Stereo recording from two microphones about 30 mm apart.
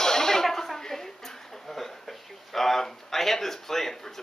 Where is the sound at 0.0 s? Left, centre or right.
Centre.